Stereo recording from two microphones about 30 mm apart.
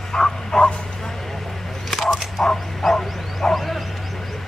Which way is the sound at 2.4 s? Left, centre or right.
Centre.